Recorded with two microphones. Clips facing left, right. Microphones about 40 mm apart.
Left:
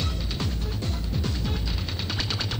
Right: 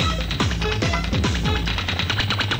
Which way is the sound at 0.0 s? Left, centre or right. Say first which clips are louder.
Right 8 dB; right.